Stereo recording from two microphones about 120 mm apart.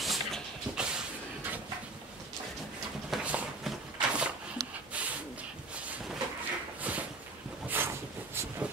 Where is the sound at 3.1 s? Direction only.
5° right (ahead or behind).